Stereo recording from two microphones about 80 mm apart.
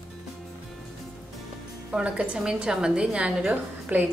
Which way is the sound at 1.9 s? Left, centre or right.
Centre.